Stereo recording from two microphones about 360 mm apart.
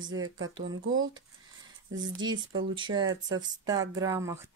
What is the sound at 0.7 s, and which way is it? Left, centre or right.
Speech, right.